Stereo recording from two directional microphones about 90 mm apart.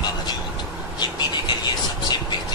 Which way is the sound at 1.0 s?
55° left (ahead or behind).